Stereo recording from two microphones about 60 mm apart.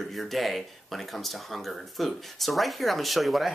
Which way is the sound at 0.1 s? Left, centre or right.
Centre.